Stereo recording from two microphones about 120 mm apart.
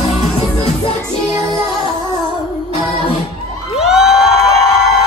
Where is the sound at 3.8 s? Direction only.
5° right (ahead or behind).